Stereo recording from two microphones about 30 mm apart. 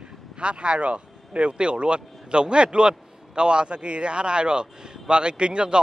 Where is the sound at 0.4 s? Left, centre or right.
Right.